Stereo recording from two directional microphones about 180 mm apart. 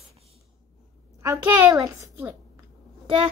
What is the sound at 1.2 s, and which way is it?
A child's voice, 20° right (ahead or behind).